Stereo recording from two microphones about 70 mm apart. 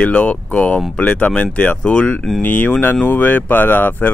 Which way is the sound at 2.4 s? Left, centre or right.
Left.